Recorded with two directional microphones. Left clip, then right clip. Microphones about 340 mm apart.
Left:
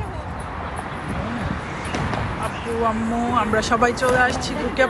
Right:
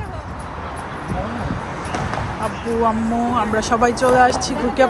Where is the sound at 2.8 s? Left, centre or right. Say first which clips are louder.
Right 3 dB; centre.